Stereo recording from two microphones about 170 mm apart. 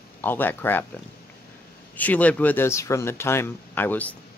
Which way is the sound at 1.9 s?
10° left (ahead or behind).